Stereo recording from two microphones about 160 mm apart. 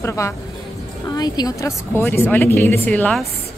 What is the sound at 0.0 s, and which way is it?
A woman's voice, 20° left (ahead or behind).